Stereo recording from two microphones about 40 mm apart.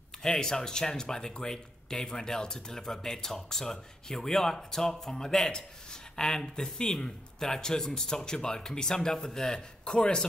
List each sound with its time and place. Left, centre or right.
0.2 s speech: centre
9.8 s chopping: centre